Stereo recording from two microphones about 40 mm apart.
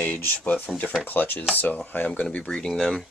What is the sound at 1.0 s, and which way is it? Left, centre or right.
Speech, left.